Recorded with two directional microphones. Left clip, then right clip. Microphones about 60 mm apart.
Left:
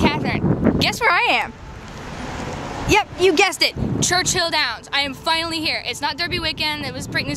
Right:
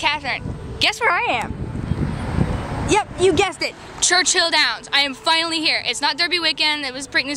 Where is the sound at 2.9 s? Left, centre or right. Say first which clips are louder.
Left 1 dB; left.